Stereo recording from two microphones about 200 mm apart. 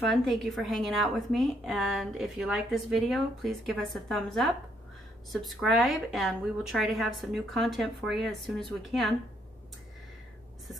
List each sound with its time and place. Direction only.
0.0 s a woman's voice: centre (ahead or behind)